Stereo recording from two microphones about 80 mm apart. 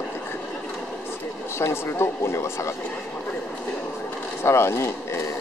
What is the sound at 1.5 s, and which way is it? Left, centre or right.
Speech, left.